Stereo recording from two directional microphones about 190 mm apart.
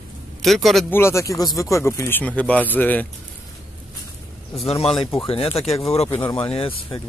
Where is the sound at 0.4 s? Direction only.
Centre (ahead or behind).